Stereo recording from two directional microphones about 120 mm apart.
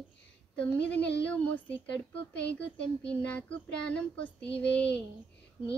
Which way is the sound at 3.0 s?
10° left (ahead or behind).